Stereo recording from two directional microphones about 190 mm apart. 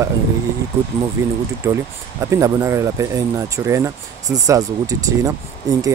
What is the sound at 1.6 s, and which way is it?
Speech, 15° right (ahead or behind).